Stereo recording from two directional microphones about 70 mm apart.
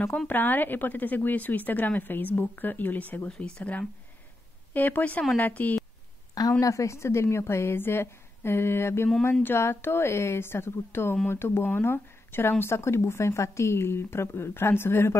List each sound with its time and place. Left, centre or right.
0.3 s a woman's voice: left
3.3 s a woman's voice: centre
6.6 s speech: left